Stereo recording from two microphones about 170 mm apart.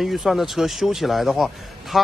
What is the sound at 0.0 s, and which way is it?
A man's voice, centre (ahead or behind).